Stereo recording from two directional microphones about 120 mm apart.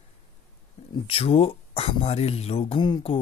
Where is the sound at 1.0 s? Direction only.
55° left (ahead or behind).